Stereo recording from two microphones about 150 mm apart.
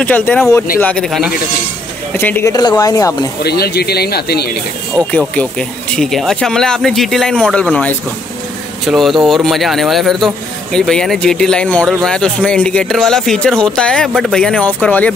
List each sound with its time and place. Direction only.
0.0 s speech: 10° left (ahead or behind)
2.1 s speech: 15° left (ahead or behind)
3.4 s speech: 90° left
5.3 s speech: 5° left (ahead or behind)